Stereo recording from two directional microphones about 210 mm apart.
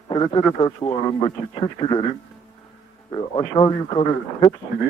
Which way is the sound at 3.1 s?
20° left (ahead or behind).